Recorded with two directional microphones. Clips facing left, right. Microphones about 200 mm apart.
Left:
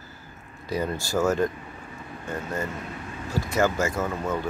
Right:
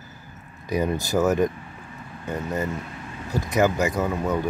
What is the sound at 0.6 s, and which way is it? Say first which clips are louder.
Speech: right 4 dB; 15° right (ahead or behind).